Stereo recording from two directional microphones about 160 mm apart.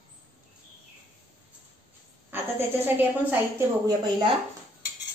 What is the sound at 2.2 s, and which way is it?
A woman's voice, 10° right (ahead or behind).